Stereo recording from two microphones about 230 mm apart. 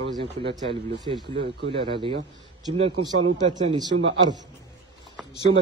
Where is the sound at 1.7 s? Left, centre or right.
Right.